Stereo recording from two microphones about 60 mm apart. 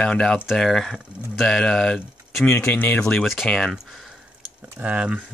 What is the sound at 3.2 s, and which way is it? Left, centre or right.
Speech, centre.